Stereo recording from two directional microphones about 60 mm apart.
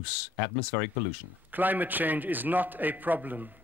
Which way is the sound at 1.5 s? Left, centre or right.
Right.